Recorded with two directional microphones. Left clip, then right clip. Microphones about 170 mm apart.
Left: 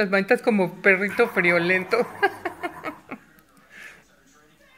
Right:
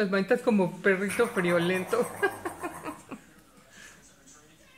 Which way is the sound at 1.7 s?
10° left (ahead or behind).